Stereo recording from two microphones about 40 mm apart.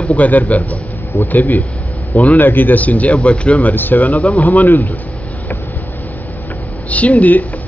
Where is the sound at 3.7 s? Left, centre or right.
Left.